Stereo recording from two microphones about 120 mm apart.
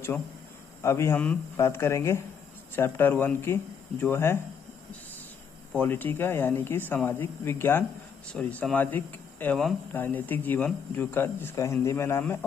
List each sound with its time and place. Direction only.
0.8 s speech: 20° left (ahead or behind)
5.8 s speech: 15° left (ahead or behind)